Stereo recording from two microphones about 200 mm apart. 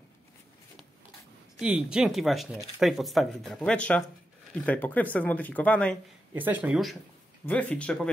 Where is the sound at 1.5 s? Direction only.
5° right (ahead or behind).